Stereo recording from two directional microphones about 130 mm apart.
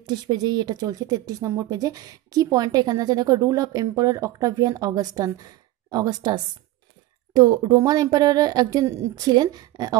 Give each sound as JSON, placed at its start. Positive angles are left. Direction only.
{"t": 0.0, "sound": "a woman's voice", "side_deg": -30}